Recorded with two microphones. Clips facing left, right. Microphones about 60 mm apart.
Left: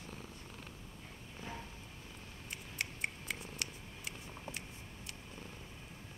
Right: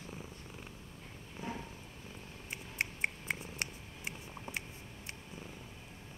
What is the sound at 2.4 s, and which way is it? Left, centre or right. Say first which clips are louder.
Purr: right 4 dB; right.